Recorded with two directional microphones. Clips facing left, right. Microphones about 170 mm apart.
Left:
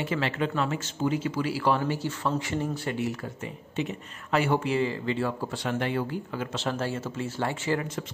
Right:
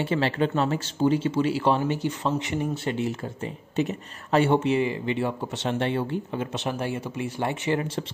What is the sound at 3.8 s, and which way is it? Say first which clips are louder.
Speech: right 5 dB; 35° right (ahead or behind).